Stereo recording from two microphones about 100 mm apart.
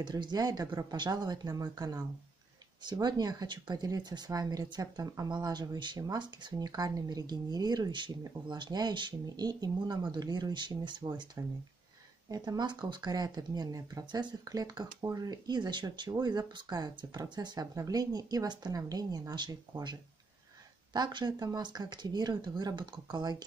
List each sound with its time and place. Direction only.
0.0 s speech: 45° right (ahead or behind)
12.3 s speech: 40° right (ahead or behind)